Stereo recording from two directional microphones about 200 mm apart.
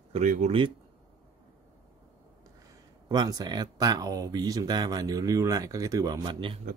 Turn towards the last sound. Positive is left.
turn(degrees=-25)  # may be behind; listen again after turning